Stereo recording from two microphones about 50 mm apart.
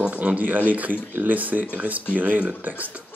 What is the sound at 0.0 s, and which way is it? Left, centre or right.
A man's voice, right.